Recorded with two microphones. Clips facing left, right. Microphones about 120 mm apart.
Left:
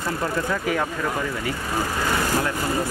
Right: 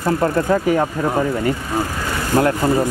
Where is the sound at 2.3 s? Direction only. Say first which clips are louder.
Right 12 dB; 45° right (ahead or behind).